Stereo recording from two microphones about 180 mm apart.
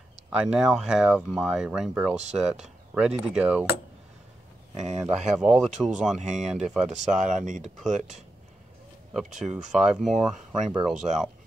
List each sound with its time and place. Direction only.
0.3 s speech: 5° right (ahead or behind)
4.7 s speech: 5° right (ahead or behind)
7.4 s speech: 45° right (ahead or behind)
9.1 s speech: centre (ahead or behind)